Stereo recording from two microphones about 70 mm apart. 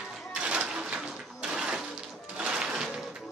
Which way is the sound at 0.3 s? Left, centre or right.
Centre.